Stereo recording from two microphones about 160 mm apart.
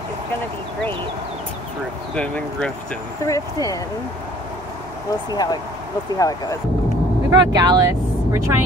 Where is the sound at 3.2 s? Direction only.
20° left (ahead or behind).